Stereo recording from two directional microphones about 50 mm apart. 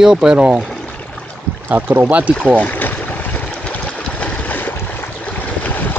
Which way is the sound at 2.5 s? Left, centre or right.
Left.